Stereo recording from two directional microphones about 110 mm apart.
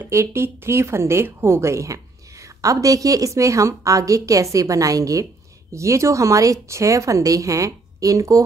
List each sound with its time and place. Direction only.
0.0 s a woman's voice: 25° right (ahead or behind)